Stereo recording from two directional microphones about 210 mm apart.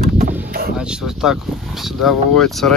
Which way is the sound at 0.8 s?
5° right (ahead or behind).